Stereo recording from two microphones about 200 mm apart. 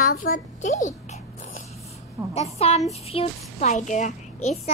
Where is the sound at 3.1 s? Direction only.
30° left (ahead or behind).